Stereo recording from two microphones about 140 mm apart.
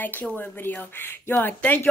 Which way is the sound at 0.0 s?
10° left (ahead or behind).